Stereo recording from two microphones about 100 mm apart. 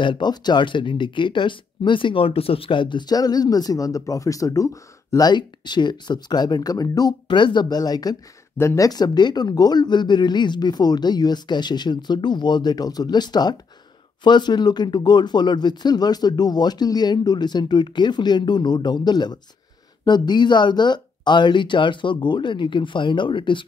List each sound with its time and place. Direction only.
0.0 s speech: 50° left (ahead or behind); by 5.3 s 35° left (ahead or behind)
5.3 s speech: 50° left (ahead or behind)